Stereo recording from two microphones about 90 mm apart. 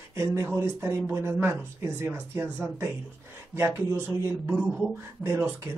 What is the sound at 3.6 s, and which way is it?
Speech, 30° right (ahead or behind).